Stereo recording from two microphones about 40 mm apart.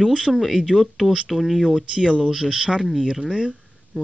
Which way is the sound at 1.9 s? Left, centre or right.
Right.